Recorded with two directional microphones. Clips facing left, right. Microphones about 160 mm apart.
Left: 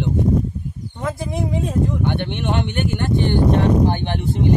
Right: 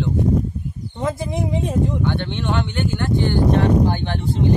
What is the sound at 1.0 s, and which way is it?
Speech, 20° right (ahead or behind).